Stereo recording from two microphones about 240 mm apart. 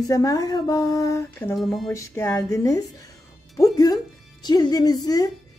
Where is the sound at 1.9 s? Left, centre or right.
Centre.